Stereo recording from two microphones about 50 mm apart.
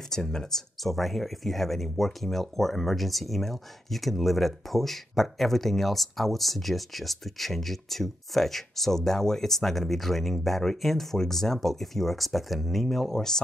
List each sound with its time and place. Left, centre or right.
0.1 s speech: centre